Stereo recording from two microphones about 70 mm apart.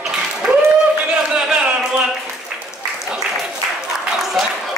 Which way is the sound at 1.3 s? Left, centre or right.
Centre.